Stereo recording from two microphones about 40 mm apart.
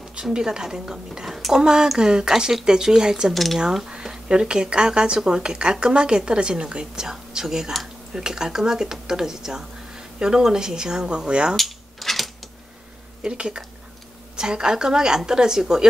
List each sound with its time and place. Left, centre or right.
0.1 s a woman's voice: centre
1.2 s speech: centre
1.5 s a woman's voice: centre
11.5 s mechanisms: centre
13.2 s a woman's voice: right